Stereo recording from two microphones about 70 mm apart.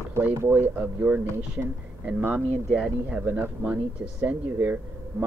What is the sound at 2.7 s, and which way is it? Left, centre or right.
A man's voice, centre.